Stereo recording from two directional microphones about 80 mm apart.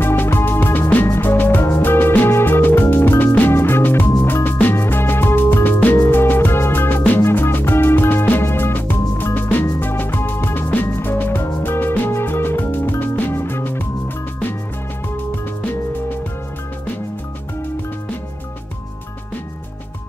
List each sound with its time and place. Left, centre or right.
0.0 s music: left